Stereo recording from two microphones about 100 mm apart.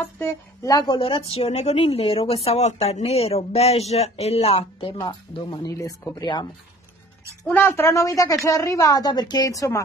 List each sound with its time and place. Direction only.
0.2 s a woman's voice: 30° left (ahead or behind)
0.9 s a woman's voice: 60° left (ahead or behind)
5.0 s speech: 55° left (ahead or behind)
5.7 s a woman's voice: 30° left (ahead or behind)
7.4 s a woman's voice: 20° left (ahead or behind)